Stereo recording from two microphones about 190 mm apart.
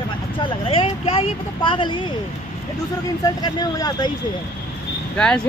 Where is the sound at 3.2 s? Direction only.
20° left (ahead or behind).